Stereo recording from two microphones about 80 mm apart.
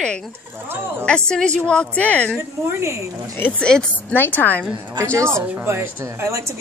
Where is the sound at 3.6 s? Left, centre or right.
Centre.